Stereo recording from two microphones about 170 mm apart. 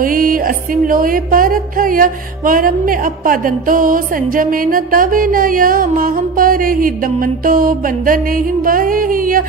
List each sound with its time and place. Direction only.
0.0 s music: 55° right (ahead or behind)